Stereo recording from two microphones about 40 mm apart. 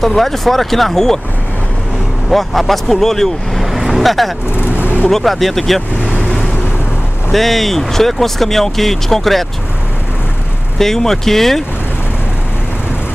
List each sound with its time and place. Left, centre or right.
0.0 s speech: centre
2.2 s speech: centre
3.6 s vehicle: centre
4.7 s vehicle: right
5.1 s speech: centre
7.2 s speech: centre
10.8 s speech: centre